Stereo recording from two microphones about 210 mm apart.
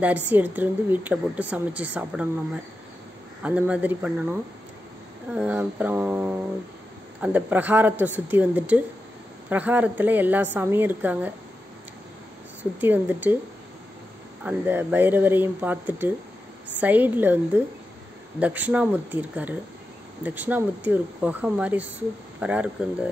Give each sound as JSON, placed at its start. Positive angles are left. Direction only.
{"t": 0.0, "sound": "a woman's voice", "side_deg": -10}
{"t": 12.8, "sound": "a woman's voice", "side_deg": -10}
{"t": 14.4, "sound": "a woman's voice", "side_deg": -10}